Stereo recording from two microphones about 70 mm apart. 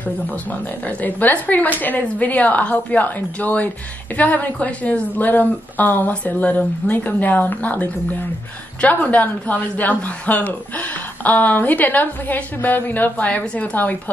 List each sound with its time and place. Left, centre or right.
0.0 s a woman's voice: left